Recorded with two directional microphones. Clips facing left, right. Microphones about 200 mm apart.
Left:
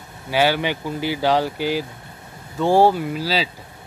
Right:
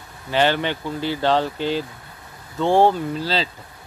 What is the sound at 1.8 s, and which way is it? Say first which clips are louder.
Vehicle: left 2 dB; 25° left (ahead or behind).